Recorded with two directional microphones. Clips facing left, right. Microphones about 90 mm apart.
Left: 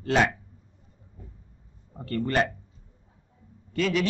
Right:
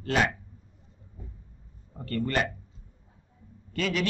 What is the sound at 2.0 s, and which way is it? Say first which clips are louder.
Speech: left 3 dB; 25° left (ahead or behind).